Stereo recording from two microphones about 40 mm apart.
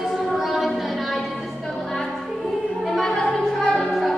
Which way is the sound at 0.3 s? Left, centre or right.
Centre.